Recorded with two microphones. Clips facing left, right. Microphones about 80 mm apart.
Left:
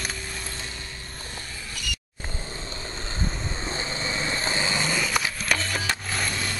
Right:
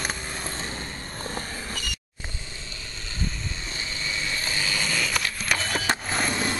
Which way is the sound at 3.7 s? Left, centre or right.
Left.